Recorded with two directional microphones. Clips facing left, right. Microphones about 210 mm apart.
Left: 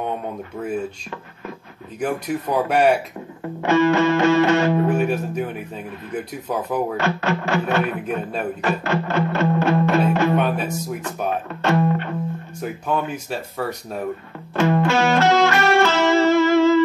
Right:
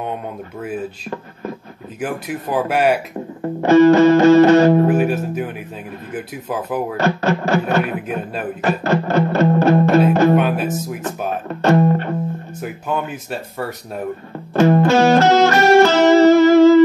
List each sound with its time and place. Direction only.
2.0 s speech: 5° right (ahead or behind)
3.6 s music: 40° right (ahead or behind)
4.9 s speech: 5° right (ahead or behind)
7.0 s music: 40° right (ahead or behind)
10.4 s speech: 5° right (ahead or behind)
11.1 s music: 40° right (ahead or behind)
12.6 s speech: 5° right (ahead or behind)
14.5 s music: 40° right (ahead or behind)